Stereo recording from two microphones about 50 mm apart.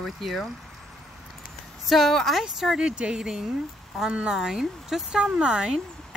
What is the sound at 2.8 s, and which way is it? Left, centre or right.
Speech, centre.